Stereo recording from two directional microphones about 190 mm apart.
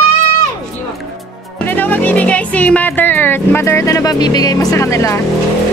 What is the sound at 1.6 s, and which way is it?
Speech, 10° left (ahead or behind).